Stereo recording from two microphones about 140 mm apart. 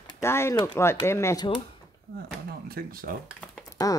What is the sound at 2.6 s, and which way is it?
Speech, 90° right.